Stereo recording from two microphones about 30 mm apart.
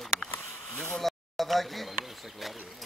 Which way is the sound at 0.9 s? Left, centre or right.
Centre.